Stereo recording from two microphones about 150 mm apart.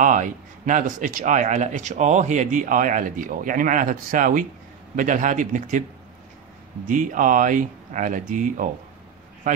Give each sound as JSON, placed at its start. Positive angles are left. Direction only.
{"t": 0.0, "sound": "speech", "side_deg": -60}
{"t": 6.9, "sound": "speech", "side_deg": -60}